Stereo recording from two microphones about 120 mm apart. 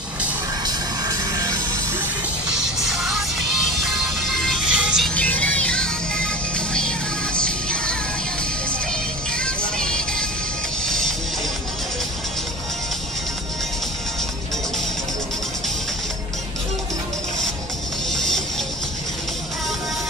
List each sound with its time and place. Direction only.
0.7 s music: 30° right (ahead or behind)
2.8 s music: centre (ahead or behind)
7.3 s music: 10° left (ahead or behind)
9.4 s music: 5° left (ahead or behind)
18.1 s music: 5° left (ahead or behind)